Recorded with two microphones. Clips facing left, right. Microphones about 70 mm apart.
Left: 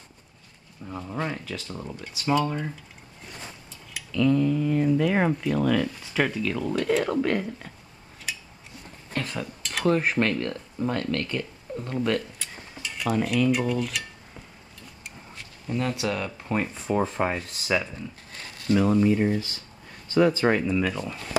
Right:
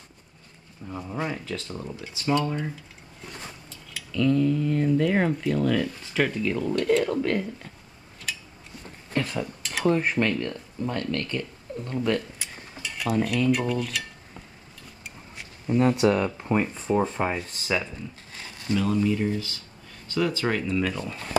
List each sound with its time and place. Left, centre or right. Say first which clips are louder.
0.9 s speech: even; centre
3.9 s speech: left 1 dB; centre
9.3 s speech: right 2 dB; centre
12.4 s a sound: even; centre
15.3 s speech: right 6 dB; centre
16.8 s speech: right 1 dB; centre
18.7 s speech: left 3 dB; left
20.7 s speech: left 1 dB; centre